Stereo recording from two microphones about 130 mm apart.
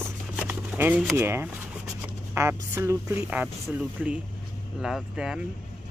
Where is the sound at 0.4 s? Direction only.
15° right (ahead or behind).